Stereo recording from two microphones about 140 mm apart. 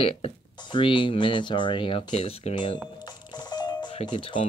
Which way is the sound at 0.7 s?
35° left (ahead or behind).